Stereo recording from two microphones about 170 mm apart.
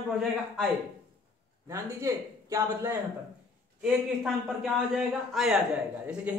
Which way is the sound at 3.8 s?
5° right (ahead or behind).